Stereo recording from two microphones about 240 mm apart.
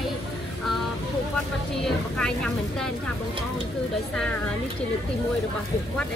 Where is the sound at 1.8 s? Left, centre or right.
Centre.